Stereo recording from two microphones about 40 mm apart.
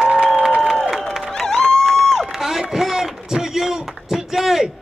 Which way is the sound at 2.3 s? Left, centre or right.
Centre.